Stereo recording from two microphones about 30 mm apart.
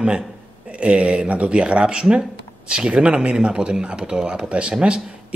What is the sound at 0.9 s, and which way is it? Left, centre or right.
Speech, right.